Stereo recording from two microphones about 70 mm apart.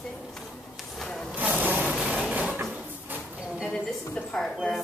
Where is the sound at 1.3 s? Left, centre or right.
Right.